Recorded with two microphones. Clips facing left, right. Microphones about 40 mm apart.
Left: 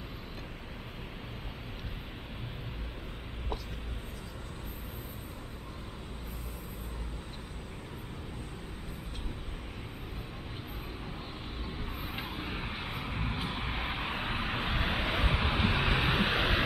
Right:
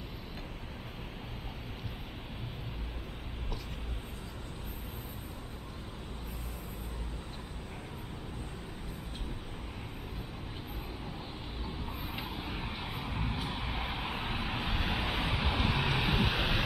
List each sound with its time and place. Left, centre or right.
12.0 s vehicle: left
12.4 s vehicle: centre